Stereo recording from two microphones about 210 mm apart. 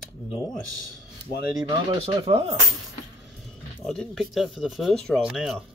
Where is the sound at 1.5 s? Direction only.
25° right (ahead or behind).